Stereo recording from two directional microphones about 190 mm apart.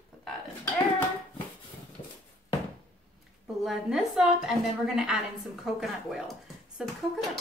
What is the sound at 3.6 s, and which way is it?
A woman's voice, centre (ahead or behind).